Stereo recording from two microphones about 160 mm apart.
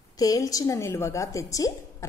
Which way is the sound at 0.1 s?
20° left (ahead or behind).